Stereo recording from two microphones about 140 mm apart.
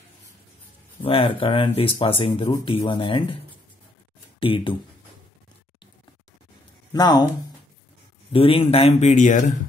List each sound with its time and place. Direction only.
1.0 s speech: 40° left (ahead or behind)
4.4 s speech: 40° left (ahead or behind)
6.9 s speech: 30° left (ahead or behind)
8.3 s speech: 40° left (ahead or behind); by 9.6 s 65° left (ahead or behind)